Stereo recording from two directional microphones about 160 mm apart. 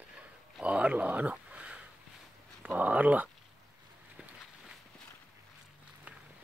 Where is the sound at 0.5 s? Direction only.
10° right (ahead or behind).